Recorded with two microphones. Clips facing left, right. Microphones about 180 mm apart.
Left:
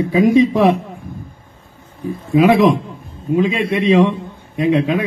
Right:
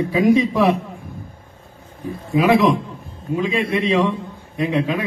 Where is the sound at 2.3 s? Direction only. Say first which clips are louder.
Left 4 dB; 25° left (ahead or behind).